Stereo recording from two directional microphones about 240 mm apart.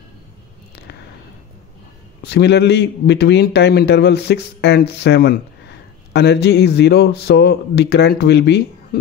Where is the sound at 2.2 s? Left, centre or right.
Left.